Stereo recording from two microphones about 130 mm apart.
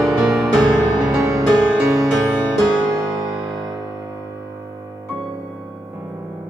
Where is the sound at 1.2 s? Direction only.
20° right (ahead or behind).